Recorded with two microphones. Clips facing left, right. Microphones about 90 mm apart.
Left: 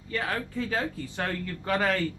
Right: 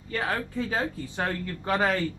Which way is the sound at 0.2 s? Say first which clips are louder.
Right 3 dB; 25° right (ahead or behind).